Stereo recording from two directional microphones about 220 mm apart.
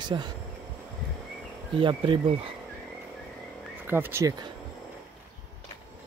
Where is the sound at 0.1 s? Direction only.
15° right (ahead or behind).